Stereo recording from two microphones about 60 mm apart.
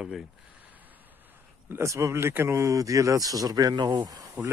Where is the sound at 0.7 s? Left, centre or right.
Right.